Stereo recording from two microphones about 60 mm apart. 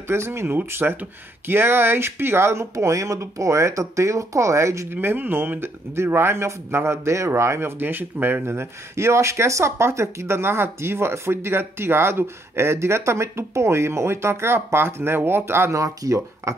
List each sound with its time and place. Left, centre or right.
0.1 s speech: right
5.0 s speech: right
7.8 s speech: right
8.5 s speech: right
15.8 s speech: right